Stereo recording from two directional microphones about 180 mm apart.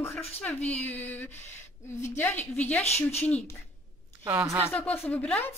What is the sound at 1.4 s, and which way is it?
Speech, 40° left (ahead or behind).